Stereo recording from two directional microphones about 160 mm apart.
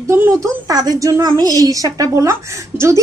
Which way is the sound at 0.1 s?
15° right (ahead or behind).